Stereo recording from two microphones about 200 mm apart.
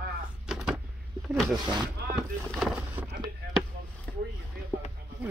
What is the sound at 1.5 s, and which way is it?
Speech, 20° right (ahead or behind).